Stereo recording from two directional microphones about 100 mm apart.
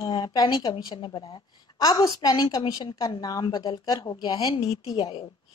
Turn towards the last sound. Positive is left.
turn(degrees=65)  # may be behind; listen again after turning